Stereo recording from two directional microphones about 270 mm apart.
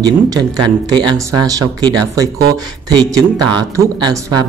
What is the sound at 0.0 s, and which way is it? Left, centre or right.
Speech, centre.